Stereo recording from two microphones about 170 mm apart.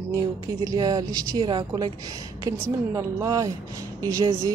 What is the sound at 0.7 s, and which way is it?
A woman's voice, 20° right (ahead or behind).